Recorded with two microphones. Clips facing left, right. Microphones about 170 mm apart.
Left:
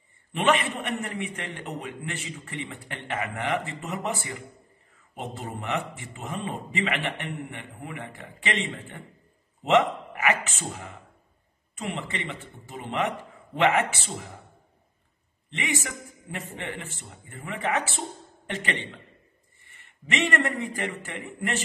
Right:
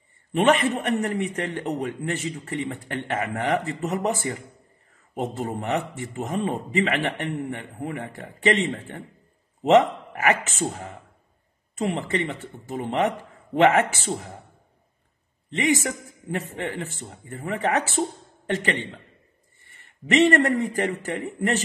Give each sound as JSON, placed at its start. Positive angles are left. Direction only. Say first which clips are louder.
{"t": 0.3, "sound": "a man's voice", "louder": "right 5 dB", "side_deg": -40}
{"t": 15.5, "sound": "a man's voice", "louder": "right 8 dB", "side_deg": -40}